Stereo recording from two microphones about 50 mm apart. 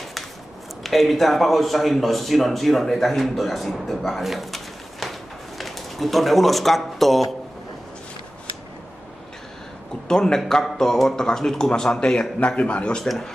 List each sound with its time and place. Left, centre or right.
0.8 s speech: centre
5.0 s a sound: centre
5.6 s speech: centre
10.0 s speech: centre
12.5 s speech: left
13.0 s speech: centre